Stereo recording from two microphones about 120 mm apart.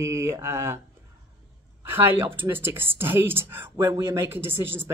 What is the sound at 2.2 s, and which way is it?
Speech, 15° right (ahead or behind).